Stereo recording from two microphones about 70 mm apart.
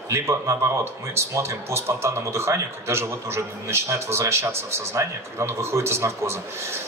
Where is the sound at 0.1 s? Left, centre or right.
Right.